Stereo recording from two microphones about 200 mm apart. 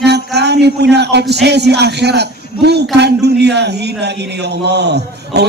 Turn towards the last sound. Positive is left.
turn(degrees=-55)  # may be behind; listen again after turning